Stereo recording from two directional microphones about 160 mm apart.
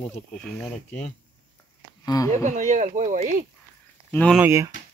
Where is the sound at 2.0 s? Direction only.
25° left (ahead or behind).